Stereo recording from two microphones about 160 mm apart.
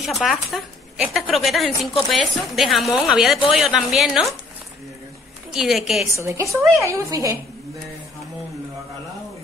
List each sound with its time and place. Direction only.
0.0 s a woman's voice: centre (ahead or behind)
5.5 s a woman's voice: centre (ahead or behind)
6.1 s a woman's voice: 20° right (ahead or behind)